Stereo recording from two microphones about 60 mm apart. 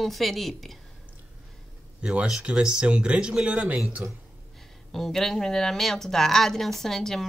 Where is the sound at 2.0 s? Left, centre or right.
Centre.